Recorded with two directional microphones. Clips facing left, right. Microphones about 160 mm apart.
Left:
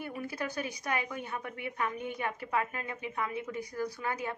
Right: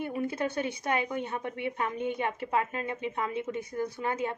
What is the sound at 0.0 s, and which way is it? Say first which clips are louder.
A woman's voice: right 6 dB; 25° right (ahead or behind).